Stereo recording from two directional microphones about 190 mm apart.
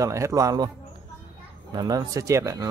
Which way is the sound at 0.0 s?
15° right (ahead or behind).